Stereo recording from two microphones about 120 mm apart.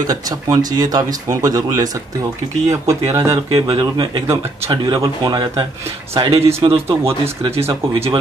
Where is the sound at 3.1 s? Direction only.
25° right (ahead or behind).